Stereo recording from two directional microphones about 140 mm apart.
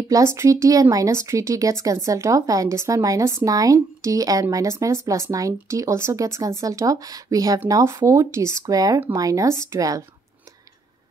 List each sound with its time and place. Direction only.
0.1 s a woman's voice: 20° right (ahead or behind)